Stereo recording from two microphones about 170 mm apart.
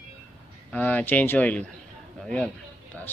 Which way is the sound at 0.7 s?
10° left (ahead or behind).